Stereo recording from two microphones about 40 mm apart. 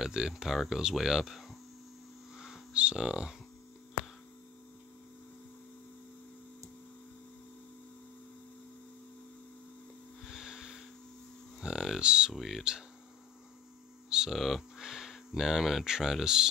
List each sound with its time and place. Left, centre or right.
0.0 s speech: centre
0.3 s speech: centre
2.3 s a sound: centre
2.7 s speech: right
10.3 s a sound: centre
11.6 s speech: centre
12.3 s speech: centre
14.0 s hum: centre
14.3 s speech: centre